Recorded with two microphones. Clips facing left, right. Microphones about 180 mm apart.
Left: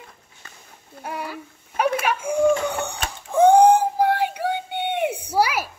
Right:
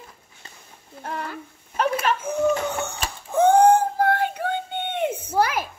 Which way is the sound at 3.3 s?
15° left (ahead or behind).